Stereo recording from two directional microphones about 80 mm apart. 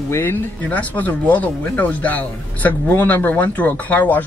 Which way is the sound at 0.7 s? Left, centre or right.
Centre.